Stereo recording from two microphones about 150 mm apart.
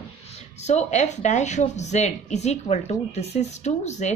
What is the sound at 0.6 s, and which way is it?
Speech, 50° left (ahead or behind).